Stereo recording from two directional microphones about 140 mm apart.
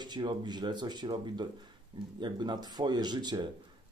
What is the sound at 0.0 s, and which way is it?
Speech, 30° right (ahead or behind).